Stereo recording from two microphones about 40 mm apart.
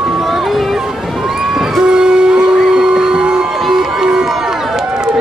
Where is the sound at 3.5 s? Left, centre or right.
Centre.